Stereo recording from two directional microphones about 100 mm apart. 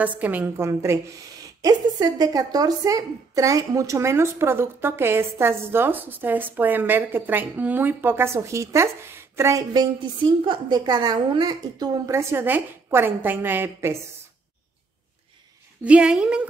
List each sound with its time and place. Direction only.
0.0 s a woman's voice: 15° right (ahead or behind)
0.6 s a woman's voice: 30° right (ahead or behind)
1.6 s a woman's voice: 40° right (ahead or behind)
9.9 s a woman's voice: 50° right (ahead or behind)
12.1 s a woman's voice: 25° right (ahead or behind)
15.8 s a woman's voice: 10° right (ahead or behind)